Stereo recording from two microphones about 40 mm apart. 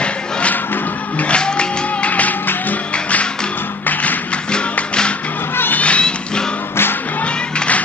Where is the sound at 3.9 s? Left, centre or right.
Left.